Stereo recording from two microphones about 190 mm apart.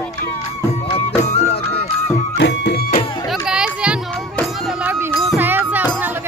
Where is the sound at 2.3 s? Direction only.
60° left (ahead or behind).